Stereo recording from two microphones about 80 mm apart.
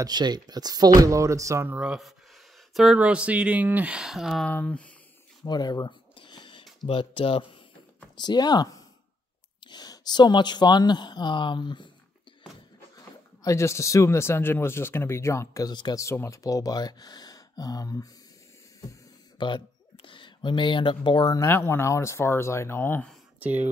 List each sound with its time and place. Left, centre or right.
0.0 s speech: right
1.8 s speech: centre
3.0 s speech: centre
4.5 s speech: centre
5.4 s a sound: left
8.2 s speech: left
9.7 s speech: left
12.9 s speech: left
15.6 s speech: left
15.9 s speech: left
19.3 s speech: left
21.5 s speech: left
23.4 s speech: right